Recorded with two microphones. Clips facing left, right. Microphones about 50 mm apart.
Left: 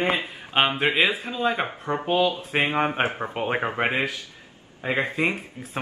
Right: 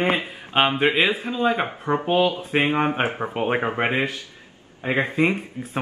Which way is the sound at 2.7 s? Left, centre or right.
Centre.